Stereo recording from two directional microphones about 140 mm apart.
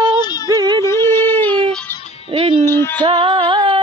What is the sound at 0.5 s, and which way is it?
Music, 30° right (ahead or behind).